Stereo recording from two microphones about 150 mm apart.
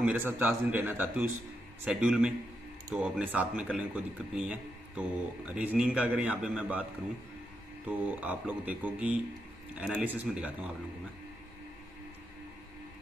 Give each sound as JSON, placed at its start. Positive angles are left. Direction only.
{"t": 0.0, "sound": "a man's voice", "side_deg": -10}
{"t": 7.9, "sound": "a man's voice", "side_deg": -10}